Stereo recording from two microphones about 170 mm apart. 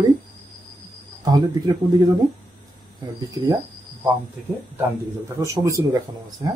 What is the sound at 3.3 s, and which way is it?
Speech, 20° right (ahead or behind).